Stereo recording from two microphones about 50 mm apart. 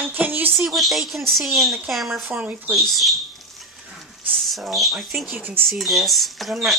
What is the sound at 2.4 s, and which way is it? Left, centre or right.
Speech, right.